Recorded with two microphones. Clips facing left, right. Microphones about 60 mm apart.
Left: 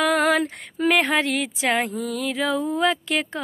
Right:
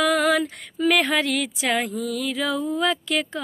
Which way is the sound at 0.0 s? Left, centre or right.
Left.